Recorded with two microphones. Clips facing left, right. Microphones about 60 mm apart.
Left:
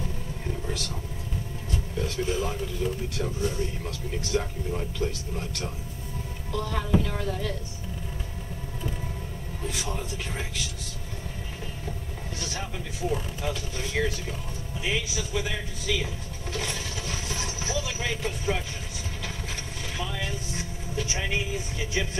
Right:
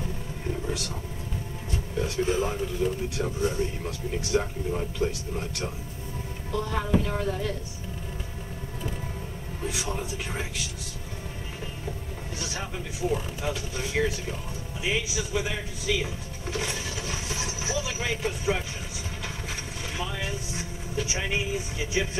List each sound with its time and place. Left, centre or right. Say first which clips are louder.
0.7 s vehicle: right 1 dB; centre
2.0 s vehicle: right 3 dB; centre
2.2 s a man's voice: right 3 dB; right
2.8 s a man's voice: right 2 dB; centre
6.5 s speech: even; centre
9.7 s speech: right 1 dB; centre
12.4 s speech: right 1 dB; centre
17.3 s vehicle: even; centre
20.0 s vehicle: even; centre